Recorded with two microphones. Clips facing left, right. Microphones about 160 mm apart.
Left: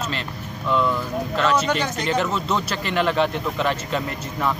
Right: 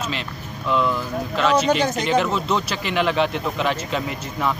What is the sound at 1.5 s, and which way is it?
Speech, 35° right (ahead or behind).